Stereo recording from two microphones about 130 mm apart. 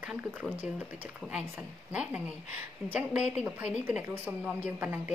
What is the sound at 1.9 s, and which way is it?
A woman's voice, 10° right (ahead or behind).